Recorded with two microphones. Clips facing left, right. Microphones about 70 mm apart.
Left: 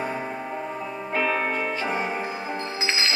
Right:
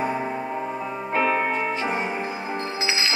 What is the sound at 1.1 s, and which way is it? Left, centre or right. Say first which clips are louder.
Music: right 3 dB; right.